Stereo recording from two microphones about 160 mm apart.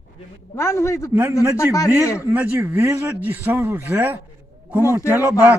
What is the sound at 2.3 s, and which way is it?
Speech, 10° right (ahead or behind).